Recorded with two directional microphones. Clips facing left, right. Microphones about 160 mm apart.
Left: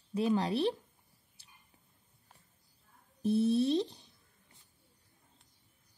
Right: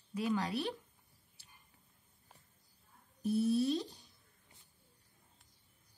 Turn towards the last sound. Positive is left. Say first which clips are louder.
# left 4 dB
turn(degrees=25)  # may be behind; listen again after turning